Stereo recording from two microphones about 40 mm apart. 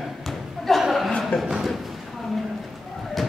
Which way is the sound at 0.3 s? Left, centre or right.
Centre.